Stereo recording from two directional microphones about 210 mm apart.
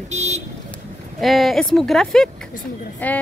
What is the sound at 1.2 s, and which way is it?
Speech, centre (ahead or behind).